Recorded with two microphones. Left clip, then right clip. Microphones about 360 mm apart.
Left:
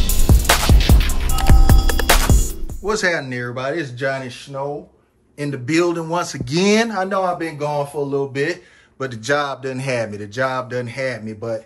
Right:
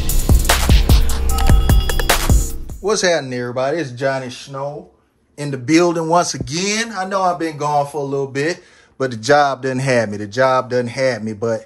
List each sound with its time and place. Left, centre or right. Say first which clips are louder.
0.0 s music: even; centre
4.5 s speech: left 1 dB; centre
6.5 s speech: left 8 dB; centre